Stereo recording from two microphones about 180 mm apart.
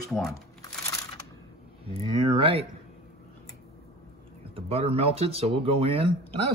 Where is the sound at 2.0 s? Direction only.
30° right (ahead or behind).